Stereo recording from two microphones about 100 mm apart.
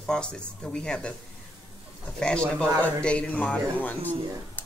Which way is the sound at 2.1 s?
10° left (ahead or behind).